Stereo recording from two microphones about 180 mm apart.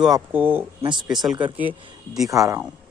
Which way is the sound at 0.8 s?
25° right (ahead or behind).